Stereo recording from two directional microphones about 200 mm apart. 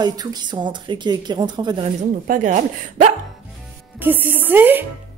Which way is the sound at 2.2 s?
40° right (ahead or behind).